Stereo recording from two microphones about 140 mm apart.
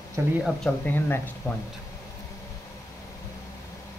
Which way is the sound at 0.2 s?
20° right (ahead or behind).